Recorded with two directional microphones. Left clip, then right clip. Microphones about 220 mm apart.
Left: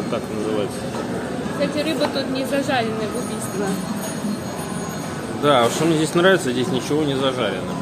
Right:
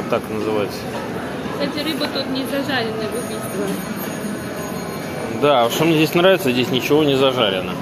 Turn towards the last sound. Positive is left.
turn(degrees=-15)  # may be behind; listen again after turning